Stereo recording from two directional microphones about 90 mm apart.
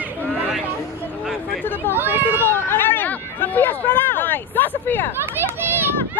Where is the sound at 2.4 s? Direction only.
25° left (ahead or behind).